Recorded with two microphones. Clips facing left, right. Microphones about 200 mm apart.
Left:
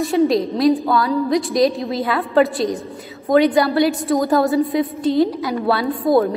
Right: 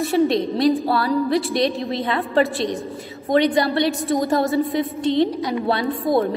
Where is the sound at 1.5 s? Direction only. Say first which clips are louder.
Left 4 dB; centre (ahead or behind).